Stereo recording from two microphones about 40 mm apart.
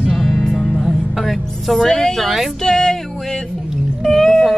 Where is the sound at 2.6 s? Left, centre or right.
Centre.